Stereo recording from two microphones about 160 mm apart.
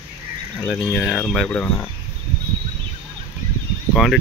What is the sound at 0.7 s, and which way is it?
Speech, centre (ahead or behind).